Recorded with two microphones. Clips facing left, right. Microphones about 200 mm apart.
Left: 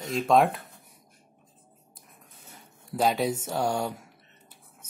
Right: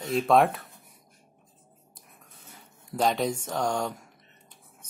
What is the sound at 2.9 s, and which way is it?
Speech, 5° left (ahead or behind).